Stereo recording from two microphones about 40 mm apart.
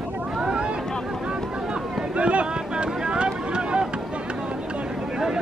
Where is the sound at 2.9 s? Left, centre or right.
Right.